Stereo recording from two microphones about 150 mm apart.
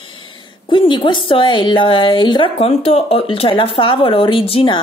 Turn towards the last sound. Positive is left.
turn(degrees=35)  # may be behind; listen again after turning